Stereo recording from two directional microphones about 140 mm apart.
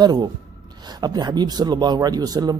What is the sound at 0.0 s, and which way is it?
Speech, 30° right (ahead or behind).